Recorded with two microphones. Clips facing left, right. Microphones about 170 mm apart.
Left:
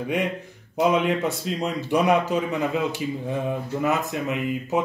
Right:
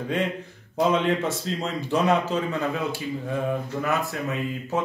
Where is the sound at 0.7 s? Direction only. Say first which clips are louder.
Left 1 dB; 15° left (ahead or behind).